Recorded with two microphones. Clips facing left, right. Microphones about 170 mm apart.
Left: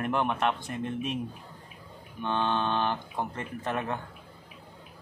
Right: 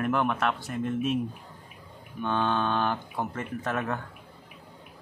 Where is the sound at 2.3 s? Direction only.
15° left (ahead or behind).